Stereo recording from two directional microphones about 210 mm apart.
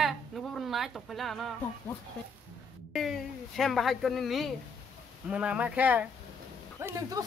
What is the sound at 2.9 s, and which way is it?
Speech, centre (ahead or behind).